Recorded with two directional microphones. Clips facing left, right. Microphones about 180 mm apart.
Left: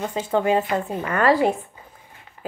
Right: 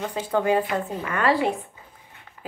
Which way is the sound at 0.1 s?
25° left (ahead or behind).